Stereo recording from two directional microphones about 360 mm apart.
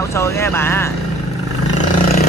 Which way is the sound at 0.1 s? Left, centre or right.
Centre.